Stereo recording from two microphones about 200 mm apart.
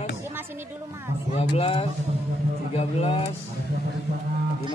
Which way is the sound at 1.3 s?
30° left (ahead or behind).